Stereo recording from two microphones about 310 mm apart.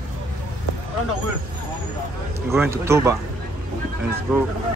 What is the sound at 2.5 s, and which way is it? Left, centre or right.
Speech, centre.